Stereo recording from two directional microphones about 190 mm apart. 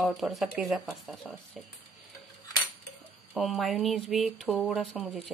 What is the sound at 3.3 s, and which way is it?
Speech, centre (ahead or behind).